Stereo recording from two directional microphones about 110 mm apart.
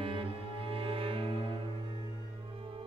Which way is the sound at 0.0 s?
55° right (ahead or behind).